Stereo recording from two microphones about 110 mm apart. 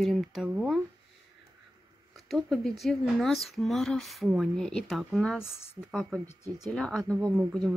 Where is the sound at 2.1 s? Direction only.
Centre (ahead or behind).